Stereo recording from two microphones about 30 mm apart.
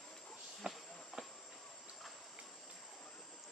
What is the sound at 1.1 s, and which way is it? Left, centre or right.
Train, centre.